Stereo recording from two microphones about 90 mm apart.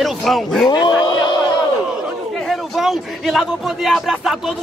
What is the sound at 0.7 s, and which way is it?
Speech, 55° left (ahead or behind).